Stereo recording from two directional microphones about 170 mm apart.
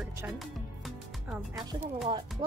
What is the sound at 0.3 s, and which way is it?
Music, centre (ahead or behind).